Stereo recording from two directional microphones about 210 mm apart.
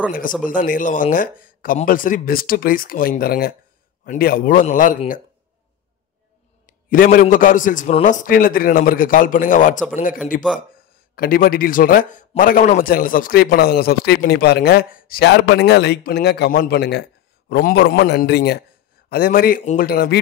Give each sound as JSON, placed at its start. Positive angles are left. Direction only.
{"t": 0.5, "sound": "a man's voice", "side_deg": 40}
{"t": 6.6, "sound": "a man's voice", "side_deg": 40}